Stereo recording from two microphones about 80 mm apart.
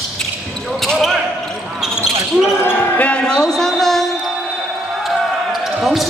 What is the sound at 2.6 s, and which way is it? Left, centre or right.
Basketball bounce, left.